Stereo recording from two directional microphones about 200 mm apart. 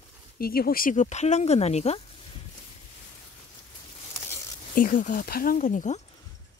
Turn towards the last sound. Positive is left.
turn(degrees=40)  # may be behind; listen again after turning